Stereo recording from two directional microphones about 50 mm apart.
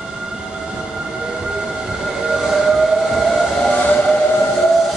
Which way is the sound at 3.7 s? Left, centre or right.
Left.